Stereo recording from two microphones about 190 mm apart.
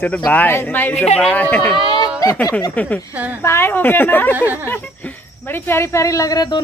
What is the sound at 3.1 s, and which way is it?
Speech, 10° right (ahead or behind).